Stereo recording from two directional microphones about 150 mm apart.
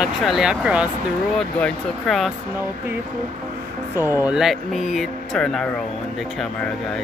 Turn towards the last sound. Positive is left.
turn(degrees=5)  # may be behind; listen again after turning